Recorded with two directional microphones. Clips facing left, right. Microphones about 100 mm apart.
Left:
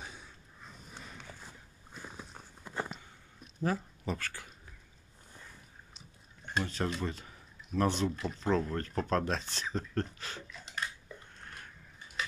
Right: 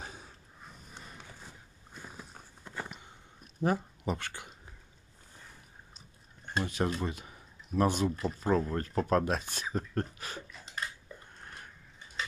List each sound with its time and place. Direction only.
0.0 s snort: 40° right (ahead or behind)
3.6 s speech: 20° right (ahead or behind)
6.4 s speech: 15° right (ahead or behind)